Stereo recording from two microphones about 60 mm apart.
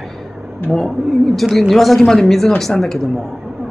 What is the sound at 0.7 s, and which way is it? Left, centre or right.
Speech, centre.